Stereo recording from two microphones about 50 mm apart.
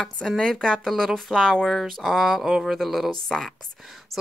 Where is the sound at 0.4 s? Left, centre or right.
Centre.